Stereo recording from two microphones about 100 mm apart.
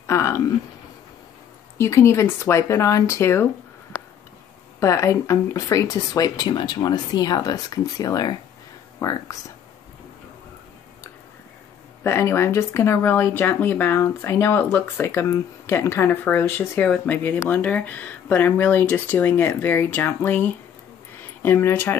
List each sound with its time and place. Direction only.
0.0 s a sound: 25° left (ahead or behind)
1.8 s speech: 30° left (ahead or behind)
4.7 s speech: 30° left (ahead or behind)
12.0 s speech: 25° left (ahead or behind)